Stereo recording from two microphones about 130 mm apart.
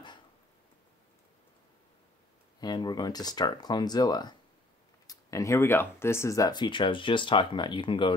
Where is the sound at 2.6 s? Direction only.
35° left (ahead or behind).